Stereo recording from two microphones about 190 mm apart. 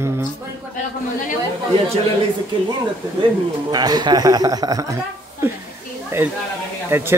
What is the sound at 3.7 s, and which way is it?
A woman's voice, 20° right (ahead or behind).